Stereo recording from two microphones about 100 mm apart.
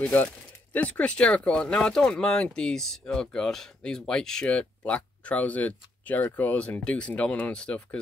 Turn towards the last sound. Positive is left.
turn(degrees=10)  # may be behind; listen again after turning